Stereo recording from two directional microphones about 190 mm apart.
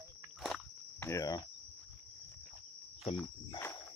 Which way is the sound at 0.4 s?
5° left (ahead or behind).